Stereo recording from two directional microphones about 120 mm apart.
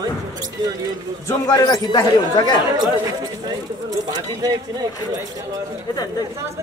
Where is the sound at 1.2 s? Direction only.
35° left (ahead or behind).